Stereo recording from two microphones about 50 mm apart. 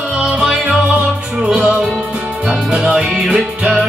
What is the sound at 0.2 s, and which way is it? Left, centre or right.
Music, centre.